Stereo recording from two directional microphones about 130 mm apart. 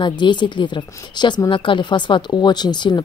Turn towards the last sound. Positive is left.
turn(degrees=35)  # may be behind; listen again after turning